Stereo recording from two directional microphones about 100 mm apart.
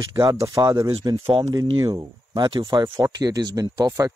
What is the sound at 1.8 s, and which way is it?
Speech, 40° right (ahead or behind).